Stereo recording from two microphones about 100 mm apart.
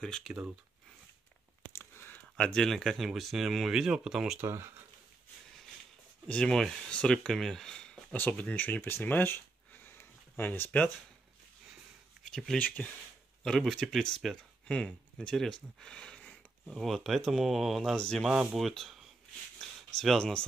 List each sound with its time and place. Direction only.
0.0 s speech: 5° left (ahead or behind)
1.7 s a sound: 25° left (ahead or behind)
2.3 s speech: 10° left (ahead or behind)
4.4 s speech: 25° right (ahead or behind)
6.2 s speech: 5° left (ahead or behind)
9.8 s a sound: 20° left (ahead or behind)
12.5 s speech: 15° left (ahead or behind)
13.4 s speech: 5° left (ahead or behind)
18.3 s speech: 5° right (ahead or behind)